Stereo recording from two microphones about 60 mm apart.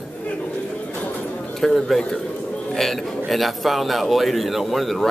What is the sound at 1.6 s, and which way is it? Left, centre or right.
A man's voice, centre.